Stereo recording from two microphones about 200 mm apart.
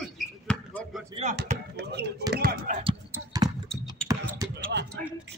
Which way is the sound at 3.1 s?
20° right (ahead or behind).